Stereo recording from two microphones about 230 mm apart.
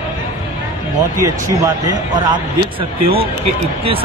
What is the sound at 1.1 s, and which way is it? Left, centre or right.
Speech, centre.